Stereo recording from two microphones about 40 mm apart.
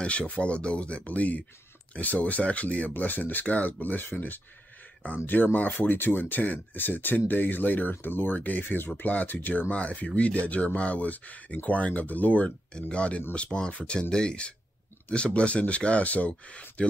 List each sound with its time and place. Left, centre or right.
0.3 s speech: left
2.9 s speech: left
8.4 s speech: left